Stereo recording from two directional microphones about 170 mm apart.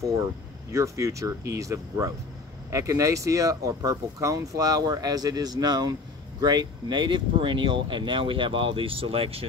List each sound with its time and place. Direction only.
0.0 s speech: 15° right (ahead or behind); by 9.5 s 35° right (ahead or behind)